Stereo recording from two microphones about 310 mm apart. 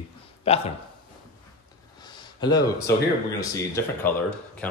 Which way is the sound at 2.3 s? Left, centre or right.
Centre.